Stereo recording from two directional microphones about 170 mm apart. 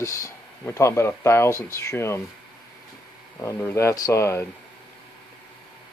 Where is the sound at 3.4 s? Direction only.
15° left (ahead or behind).